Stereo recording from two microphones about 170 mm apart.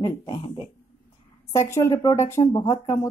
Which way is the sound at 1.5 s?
15° left (ahead or behind).